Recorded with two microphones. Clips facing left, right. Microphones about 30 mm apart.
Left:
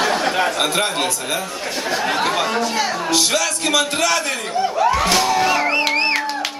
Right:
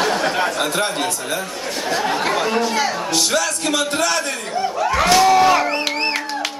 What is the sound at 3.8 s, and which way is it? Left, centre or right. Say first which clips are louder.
Speech: left 2 dB; left.